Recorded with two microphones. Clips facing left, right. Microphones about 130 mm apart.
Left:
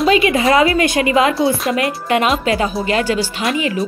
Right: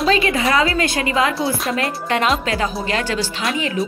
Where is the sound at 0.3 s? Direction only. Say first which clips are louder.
Left 5 dB; 25° left (ahead or behind).